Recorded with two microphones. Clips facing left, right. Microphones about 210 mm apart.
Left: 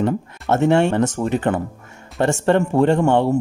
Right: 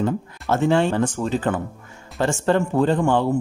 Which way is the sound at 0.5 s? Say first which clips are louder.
Left 3 dB; 25° left (ahead or behind).